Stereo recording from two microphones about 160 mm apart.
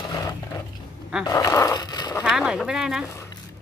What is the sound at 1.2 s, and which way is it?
Speech, 20° left (ahead or behind).